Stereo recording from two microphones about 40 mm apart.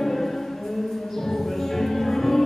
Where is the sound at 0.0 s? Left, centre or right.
Centre.